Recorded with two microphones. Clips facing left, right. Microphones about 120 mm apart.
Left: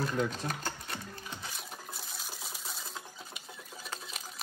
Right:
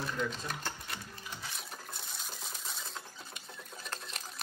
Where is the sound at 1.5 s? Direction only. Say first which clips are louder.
Left 1 dB; centre (ahead or behind).